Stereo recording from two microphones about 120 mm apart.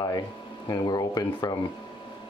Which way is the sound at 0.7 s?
35° left (ahead or behind).